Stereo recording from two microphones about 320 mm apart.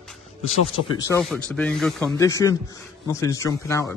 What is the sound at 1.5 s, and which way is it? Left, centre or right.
Speech, centre.